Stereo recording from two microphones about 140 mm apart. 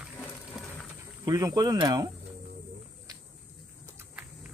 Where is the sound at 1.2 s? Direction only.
25° right (ahead or behind).